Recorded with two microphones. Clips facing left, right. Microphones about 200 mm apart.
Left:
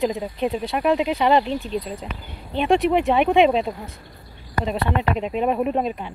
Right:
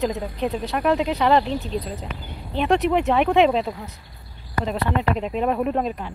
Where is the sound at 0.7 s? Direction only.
10° left (ahead or behind).